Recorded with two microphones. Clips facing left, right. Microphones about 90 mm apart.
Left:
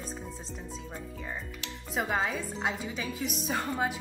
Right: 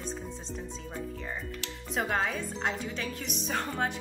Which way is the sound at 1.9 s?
5° left (ahead or behind).